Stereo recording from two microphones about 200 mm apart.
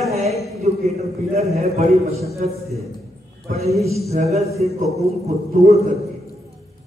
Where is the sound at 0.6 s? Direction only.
30° right (ahead or behind).